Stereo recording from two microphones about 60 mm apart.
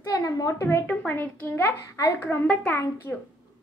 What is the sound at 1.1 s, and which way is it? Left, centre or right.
Speech, left.